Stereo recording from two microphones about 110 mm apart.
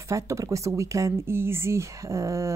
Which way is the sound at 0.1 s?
30° right (ahead or behind).